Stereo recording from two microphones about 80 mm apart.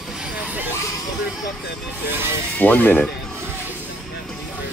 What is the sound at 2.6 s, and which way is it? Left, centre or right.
Speech, left.